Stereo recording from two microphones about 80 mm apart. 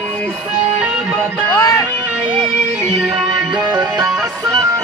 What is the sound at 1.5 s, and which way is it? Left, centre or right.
Music, left.